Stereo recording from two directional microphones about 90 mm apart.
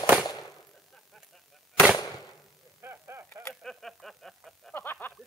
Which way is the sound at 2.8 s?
25° right (ahead or behind).